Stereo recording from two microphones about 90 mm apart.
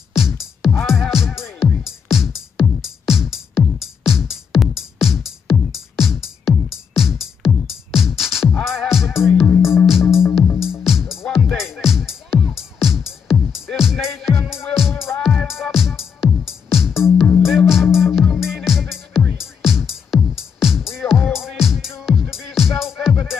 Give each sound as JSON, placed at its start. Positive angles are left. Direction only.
{"t": 0.1, "sound": "music", "side_deg": -5}
{"t": 10.2, "sound": "music", "side_deg": 25}
{"t": 10.6, "sound": "music", "side_deg": -5}